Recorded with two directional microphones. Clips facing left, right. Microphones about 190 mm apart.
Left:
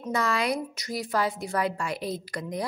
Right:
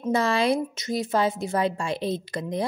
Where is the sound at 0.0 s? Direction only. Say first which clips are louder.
Right 5 dB; 30° right (ahead or behind).